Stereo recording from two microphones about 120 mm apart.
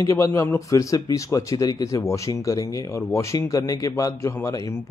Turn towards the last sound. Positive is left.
turn(degrees=25)  # may be behind; listen again after turning